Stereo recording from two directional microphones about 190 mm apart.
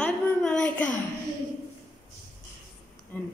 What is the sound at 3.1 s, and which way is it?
Speech, 10° left (ahead or behind).